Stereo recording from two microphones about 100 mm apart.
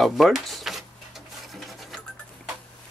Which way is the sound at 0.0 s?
Centre (ahead or behind).